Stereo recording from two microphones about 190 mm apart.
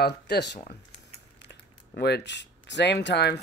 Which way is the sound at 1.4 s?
65° left (ahead or behind).